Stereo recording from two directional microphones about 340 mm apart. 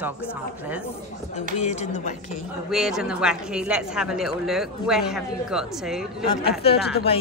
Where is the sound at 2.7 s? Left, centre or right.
Centre.